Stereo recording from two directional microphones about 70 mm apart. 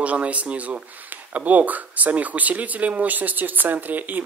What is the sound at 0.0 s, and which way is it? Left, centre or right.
Speech, centre.